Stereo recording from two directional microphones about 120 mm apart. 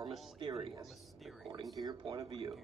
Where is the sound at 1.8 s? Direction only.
35° right (ahead or behind).